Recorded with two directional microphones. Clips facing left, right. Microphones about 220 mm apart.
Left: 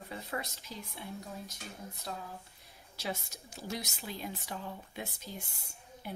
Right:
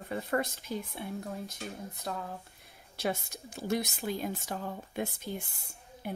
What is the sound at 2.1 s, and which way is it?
Speech, 50° right (ahead or behind).